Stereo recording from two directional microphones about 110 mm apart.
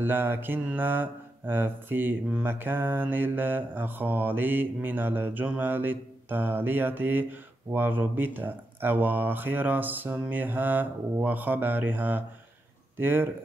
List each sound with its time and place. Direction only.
0.0 s mantra: 20° right (ahead or behind)
12.9 s speech: 20° right (ahead or behind)